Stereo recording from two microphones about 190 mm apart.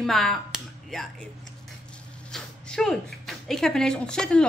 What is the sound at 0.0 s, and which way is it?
Speech, centre (ahead or behind).